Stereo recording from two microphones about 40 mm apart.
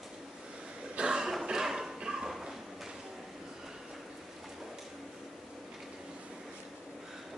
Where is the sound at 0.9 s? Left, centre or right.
Right.